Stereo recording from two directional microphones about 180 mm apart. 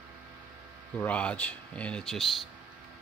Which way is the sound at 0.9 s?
5° left (ahead or behind).